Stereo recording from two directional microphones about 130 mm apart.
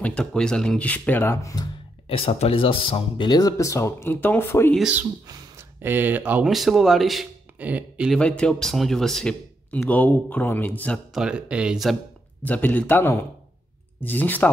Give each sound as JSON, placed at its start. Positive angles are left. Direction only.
{"t": 0.0, "sound": "speech", "side_deg": 5}
{"t": 2.0, "sound": "speech", "side_deg": 50}
{"t": 3.3, "sound": "speech", "side_deg": 30}
{"t": 4.7, "sound": "speech", "side_deg": -10}
{"t": 5.2, "sound": "a sound", "side_deg": -30}
{"t": 5.8, "sound": "speech", "side_deg": -15}
{"t": 6.5, "sound": "speech", "side_deg": 0}
{"t": 7.5, "sound": "speech", "side_deg": -10}
{"t": 8.1, "sound": "speech", "side_deg": 5}
{"t": 11.1, "sound": "speech", "side_deg": -5}
{"t": 12.4, "sound": "speech", "side_deg": 10}